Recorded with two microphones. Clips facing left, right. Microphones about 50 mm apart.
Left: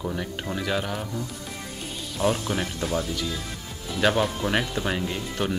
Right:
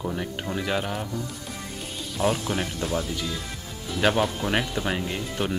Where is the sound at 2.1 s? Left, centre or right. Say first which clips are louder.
Even; centre.